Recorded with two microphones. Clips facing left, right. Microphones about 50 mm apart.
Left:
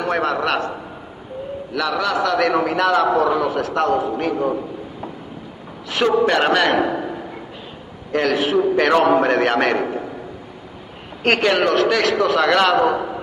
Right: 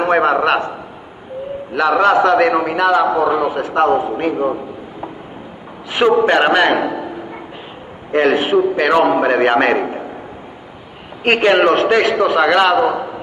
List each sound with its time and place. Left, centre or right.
0.0 s a man's voice: right
1.7 s a man's voice: right
5.9 s a man's voice: centre
8.1 s a man's voice: right
8.5 s a man's voice: centre
11.2 s a man's voice: centre
11.5 s a man's voice: right; by 12.9 s centre